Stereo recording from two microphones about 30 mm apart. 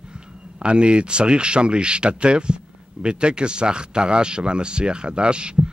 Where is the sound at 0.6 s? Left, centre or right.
Right.